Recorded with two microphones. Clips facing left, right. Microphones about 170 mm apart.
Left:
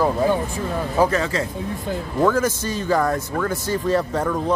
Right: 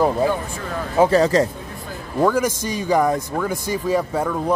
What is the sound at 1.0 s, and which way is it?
Speech, 35° right (ahead or behind).